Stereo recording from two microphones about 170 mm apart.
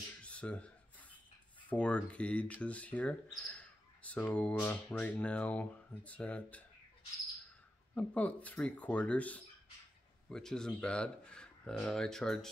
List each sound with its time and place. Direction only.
0.2 s a sound: 5° left (ahead or behind)
1.7 s speech: 5° left (ahead or behind)
4.9 s speech: 5° left (ahead or behind)
7.9 s speech: 10° left (ahead or behind)